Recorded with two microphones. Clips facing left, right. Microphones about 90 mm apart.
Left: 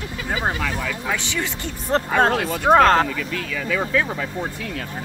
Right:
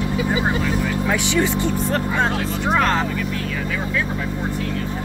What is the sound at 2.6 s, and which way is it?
Speech, 45° left (ahead or behind).